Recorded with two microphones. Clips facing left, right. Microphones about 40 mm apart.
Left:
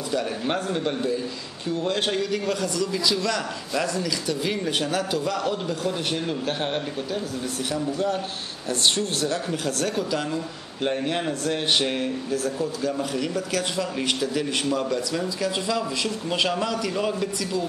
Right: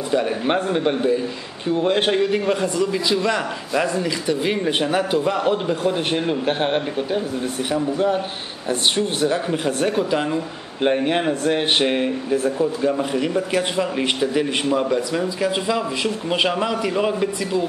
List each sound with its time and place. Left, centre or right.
0.1 s speech: right